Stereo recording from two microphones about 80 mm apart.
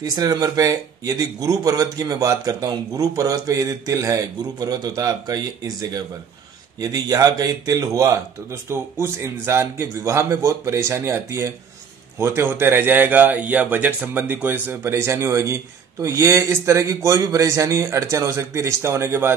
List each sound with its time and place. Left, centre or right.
0.0 s speech: right
9.0 s speech: right